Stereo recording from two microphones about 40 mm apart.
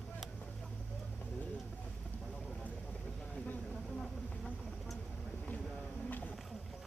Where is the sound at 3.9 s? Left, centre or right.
Centre.